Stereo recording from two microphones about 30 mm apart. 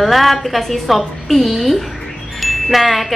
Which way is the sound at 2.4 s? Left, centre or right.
Centre.